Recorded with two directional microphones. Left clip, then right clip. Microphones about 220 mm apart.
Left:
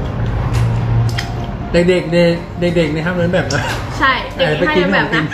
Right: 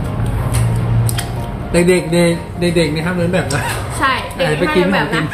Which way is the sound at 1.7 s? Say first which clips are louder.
Left 1 dB; 15° right (ahead or behind).